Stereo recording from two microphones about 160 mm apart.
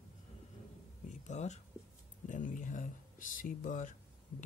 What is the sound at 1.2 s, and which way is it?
Speech, 45° left (ahead or behind).